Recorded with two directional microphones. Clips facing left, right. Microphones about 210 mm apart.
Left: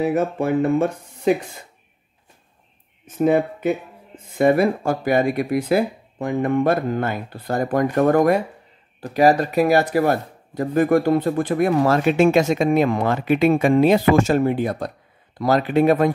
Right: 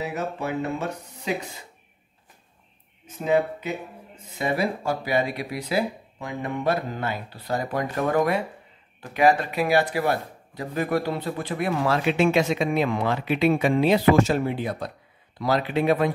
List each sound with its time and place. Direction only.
0.0 s speech: 50° left (ahead or behind)
3.1 s speech: 50° left (ahead or behind)